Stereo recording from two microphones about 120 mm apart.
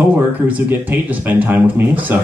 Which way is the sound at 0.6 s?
15° right (ahead or behind).